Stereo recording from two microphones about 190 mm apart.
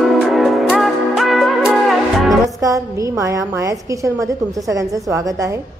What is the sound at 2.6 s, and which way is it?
A woman's voice, 15° right (ahead or behind).